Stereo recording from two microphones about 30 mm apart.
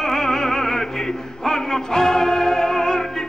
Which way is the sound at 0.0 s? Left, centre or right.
Centre.